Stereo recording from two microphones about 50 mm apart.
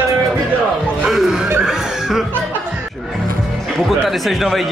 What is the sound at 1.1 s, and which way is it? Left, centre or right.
Speech, centre.